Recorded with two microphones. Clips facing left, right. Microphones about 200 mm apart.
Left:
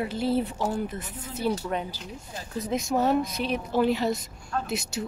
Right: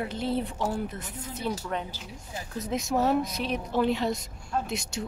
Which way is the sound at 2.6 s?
Centre (ahead or behind).